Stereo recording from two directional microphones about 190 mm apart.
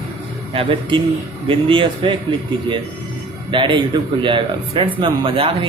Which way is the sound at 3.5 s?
25° right (ahead or behind).